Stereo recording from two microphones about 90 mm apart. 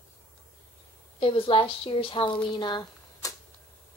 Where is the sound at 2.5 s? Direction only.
55° left (ahead or behind).